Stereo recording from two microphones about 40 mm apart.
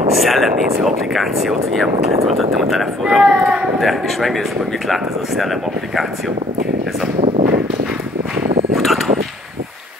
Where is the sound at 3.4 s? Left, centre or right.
Right.